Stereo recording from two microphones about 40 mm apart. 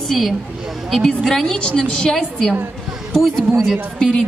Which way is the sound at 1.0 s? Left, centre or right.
Centre.